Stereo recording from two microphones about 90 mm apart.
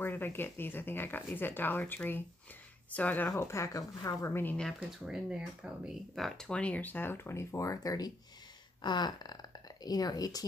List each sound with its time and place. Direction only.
0.0 s speech: 25° left (ahead or behind)
3.3 s speech: 30° left (ahead or behind)
4.7 s speech: 10° right (ahead or behind); by 8.1 s 40° left (ahead or behind)
8.8 s a sound: 55° left (ahead or behind)